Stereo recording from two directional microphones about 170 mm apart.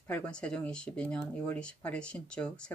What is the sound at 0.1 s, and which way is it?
Speech, 5° left (ahead or behind).